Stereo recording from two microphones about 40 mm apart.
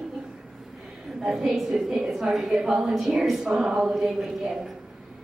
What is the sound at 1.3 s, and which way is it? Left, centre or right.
A woman's voice, centre.